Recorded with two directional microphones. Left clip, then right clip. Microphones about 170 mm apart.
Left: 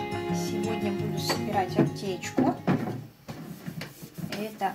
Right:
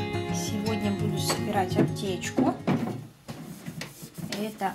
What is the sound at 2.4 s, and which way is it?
Speech, 5° left (ahead or behind).